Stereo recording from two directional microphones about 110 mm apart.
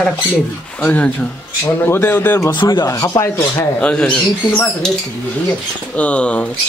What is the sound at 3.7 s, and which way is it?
Speech, 10° left (ahead or behind).